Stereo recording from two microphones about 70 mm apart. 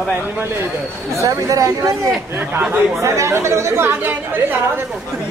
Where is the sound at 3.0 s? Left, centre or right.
Right.